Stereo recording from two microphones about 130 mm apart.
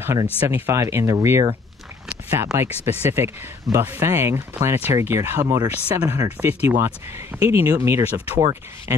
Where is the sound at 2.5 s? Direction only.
20° right (ahead or behind).